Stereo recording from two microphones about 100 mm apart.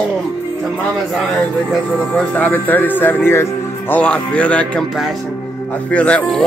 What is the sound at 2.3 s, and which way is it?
Speech, 15° left (ahead or behind).